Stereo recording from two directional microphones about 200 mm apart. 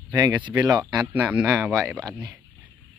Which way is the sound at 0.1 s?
20° right (ahead or behind).